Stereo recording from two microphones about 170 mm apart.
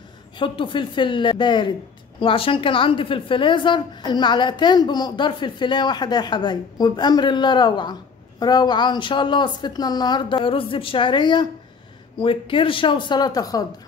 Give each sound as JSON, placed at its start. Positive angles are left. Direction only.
{"t": 0.4, "sound": "a woman's voice", "side_deg": 30}